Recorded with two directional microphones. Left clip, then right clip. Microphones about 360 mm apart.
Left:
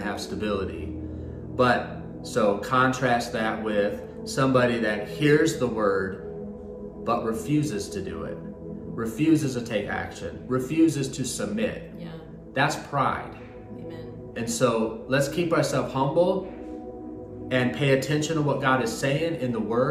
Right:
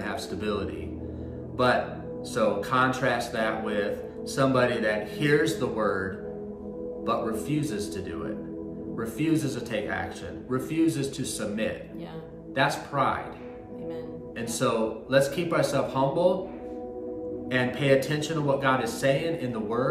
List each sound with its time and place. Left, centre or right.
0.0 s a man's voice: centre
14.4 s a man's voice: centre
17.5 s a man's voice: centre